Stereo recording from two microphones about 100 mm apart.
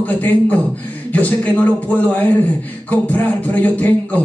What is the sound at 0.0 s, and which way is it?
Beatboxing, 15° left (ahead or behind).